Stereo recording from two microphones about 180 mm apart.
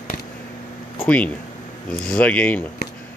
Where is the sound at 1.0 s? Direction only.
10° left (ahead or behind).